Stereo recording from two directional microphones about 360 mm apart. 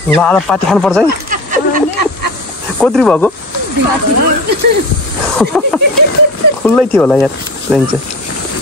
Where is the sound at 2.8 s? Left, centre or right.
Centre.